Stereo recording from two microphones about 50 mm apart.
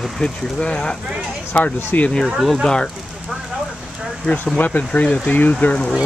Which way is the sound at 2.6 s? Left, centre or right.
Centre.